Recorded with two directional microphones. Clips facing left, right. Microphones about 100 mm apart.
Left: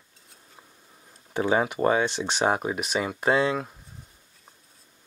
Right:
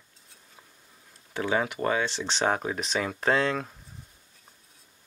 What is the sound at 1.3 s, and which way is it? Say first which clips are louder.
Speech: left 4 dB; 25° left (ahead or behind).